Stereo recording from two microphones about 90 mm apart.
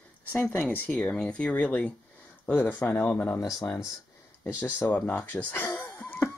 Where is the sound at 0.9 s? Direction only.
10° left (ahead or behind).